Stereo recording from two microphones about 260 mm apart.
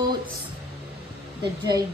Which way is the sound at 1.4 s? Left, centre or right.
Centre.